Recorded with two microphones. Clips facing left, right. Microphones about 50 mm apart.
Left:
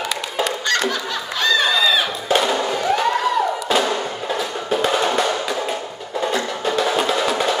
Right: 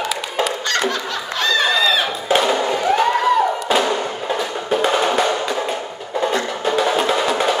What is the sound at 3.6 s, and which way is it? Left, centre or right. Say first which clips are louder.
Music: right 1 dB; centre.